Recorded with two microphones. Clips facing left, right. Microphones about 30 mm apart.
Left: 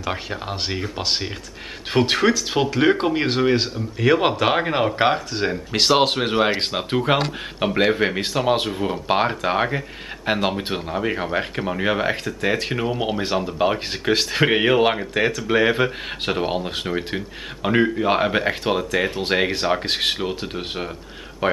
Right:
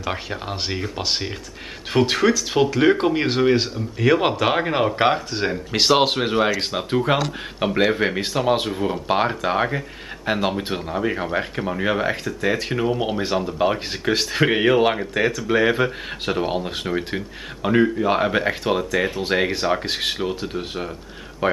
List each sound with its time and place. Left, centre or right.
0.0 s speech: centre
6.7 s speech: centre
7.9 s speech: centre